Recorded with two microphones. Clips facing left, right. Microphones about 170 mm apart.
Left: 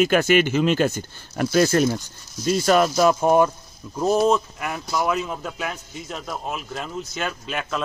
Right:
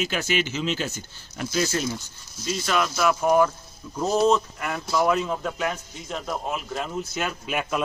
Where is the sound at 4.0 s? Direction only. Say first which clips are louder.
Left 2 dB; 15° left (ahead or behind).